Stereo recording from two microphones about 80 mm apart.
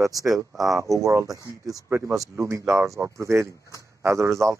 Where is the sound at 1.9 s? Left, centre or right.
Right.